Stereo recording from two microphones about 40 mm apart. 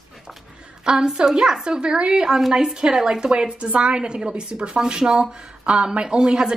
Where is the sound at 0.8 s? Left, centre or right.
Centre.